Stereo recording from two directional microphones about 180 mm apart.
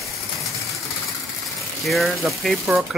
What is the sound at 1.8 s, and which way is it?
Speech, centre (ahead or behind).